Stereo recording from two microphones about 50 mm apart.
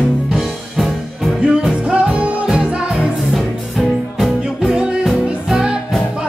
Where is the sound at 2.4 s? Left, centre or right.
Centre.